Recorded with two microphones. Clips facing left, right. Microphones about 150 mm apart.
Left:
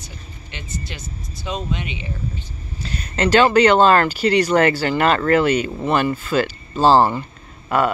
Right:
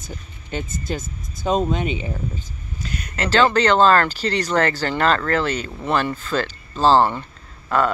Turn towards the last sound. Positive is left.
turn(degrees=10)  # may be behind; listen again after turning